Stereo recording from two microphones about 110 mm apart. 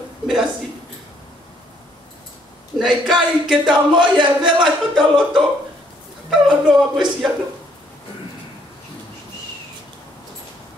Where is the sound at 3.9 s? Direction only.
45° right (ahead or behind).